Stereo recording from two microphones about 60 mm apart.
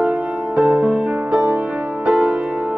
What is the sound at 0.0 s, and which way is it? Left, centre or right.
Music, right.